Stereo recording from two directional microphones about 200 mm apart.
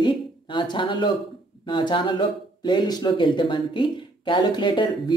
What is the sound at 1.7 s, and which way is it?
Speech, 25° left (ahead or behind).